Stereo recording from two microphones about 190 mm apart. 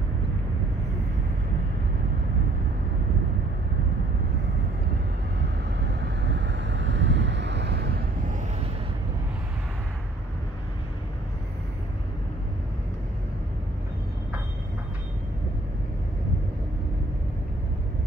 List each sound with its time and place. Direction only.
5.4 s vehicle: 65° right (ahead or behind)